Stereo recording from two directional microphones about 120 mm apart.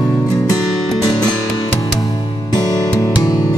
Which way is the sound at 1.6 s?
30° left (ahead or behind).